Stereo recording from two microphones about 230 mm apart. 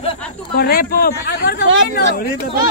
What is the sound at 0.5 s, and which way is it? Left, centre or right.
A man's voice, left.